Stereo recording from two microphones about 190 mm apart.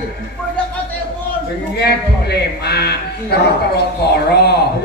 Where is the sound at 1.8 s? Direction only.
60° left (ahead or behind).